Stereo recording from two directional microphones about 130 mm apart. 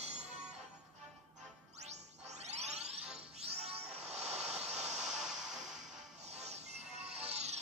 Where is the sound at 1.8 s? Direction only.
60° right (ahead or behind).